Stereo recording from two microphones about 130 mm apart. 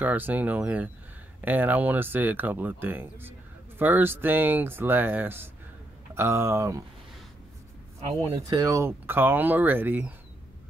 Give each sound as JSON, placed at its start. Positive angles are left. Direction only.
{"t": 0.0, "sound": "speech", "side_deg": -15}
{"t": 8.2, "sound": "speech", "side_deg": -30}